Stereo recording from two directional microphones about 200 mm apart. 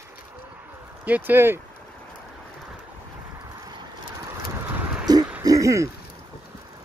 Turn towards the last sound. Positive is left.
turn(degrees=-15)  # may be behind; listen again after turning